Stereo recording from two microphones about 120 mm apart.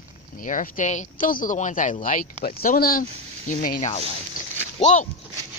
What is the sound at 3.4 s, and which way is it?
Speech, 75° left (ahead or behind).